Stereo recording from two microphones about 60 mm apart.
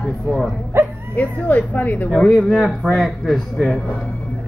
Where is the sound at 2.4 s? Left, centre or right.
Centre.